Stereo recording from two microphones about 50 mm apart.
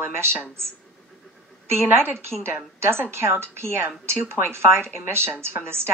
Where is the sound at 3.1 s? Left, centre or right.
Right.